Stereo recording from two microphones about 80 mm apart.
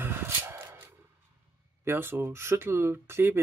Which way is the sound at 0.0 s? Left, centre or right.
Right.